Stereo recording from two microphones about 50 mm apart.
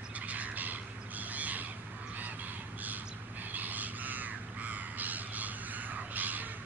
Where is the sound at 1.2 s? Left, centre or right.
Right.